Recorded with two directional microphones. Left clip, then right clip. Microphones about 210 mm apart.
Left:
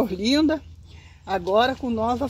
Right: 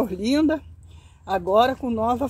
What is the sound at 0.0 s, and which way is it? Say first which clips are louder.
Speech: left 1 dB; 5° left (ahead or behind).